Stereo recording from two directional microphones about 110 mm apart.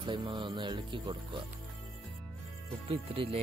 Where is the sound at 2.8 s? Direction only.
55° right (ahead or behind).